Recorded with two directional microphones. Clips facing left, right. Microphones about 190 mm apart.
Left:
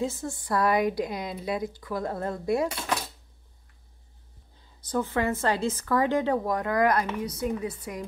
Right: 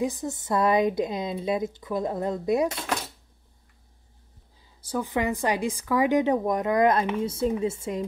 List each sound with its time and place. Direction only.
0.0 s a woman's voice: 15° right (ahead or behind)
4.8 s a woman's voice: 10° right (ahead or behind)